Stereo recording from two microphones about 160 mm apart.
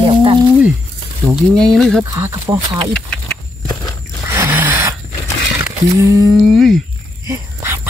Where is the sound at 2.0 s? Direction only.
20° right (ahead or behind).